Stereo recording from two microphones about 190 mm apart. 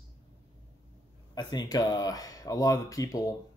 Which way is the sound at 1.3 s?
20° left (ahead or behind).